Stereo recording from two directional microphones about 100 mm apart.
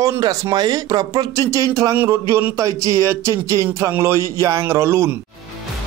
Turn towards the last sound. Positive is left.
turn(degrees=-25)  # may be behind; listen again after turning